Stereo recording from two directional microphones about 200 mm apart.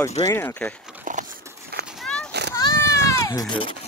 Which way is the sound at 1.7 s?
55° right (ahead or behind).